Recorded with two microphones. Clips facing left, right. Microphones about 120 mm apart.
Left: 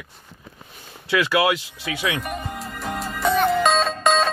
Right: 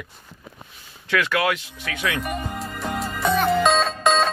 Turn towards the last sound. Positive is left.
turn(degrees=0)  # may be behind; listen again after turning